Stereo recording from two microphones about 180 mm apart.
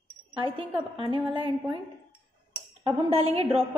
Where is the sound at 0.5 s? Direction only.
30° right (ahead or behind).